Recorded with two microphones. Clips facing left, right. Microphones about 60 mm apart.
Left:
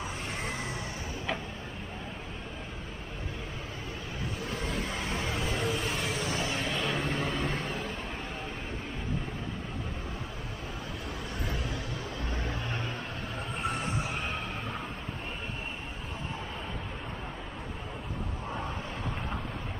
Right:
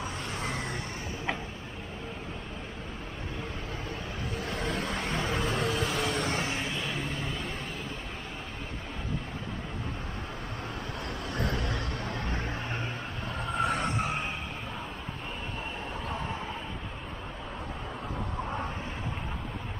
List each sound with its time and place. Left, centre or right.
0.4 s vehicle: right
4.5 s vehicle: right
6.6 s a sound: centre
7.2 s vehicle: left
11.3 s vehicle: right
12.3 s a sound: right
13.5 s vehicle: right